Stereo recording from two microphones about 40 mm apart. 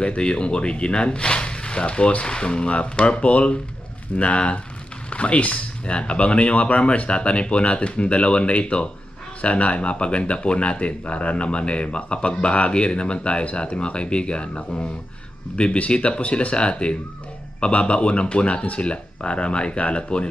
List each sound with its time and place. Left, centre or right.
0.0 s speech: left